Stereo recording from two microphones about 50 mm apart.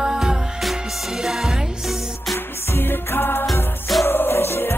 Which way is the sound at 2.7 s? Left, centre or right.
Left.